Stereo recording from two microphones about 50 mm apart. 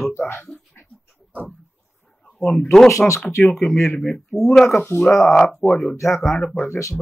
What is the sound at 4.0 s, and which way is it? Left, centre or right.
Speech, centre.